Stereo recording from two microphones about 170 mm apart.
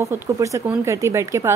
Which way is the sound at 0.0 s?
20° right (ahead or behind).